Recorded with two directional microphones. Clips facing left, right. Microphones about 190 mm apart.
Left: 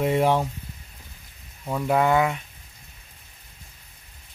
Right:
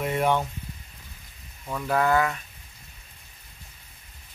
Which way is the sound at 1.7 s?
20° left (ahead or behind).